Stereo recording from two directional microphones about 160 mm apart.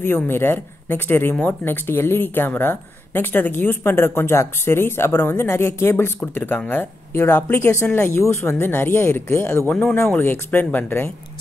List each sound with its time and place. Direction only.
0.0 s speech: 15° left (ahead or behind)